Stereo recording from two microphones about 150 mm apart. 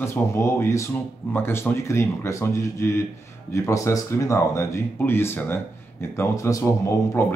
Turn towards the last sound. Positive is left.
turn(degrees=15)  # may be behind; listen again after turning